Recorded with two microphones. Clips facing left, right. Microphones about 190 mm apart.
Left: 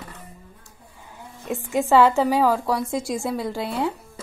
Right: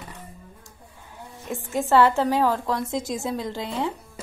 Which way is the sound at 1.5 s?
15° left (ahead or behind).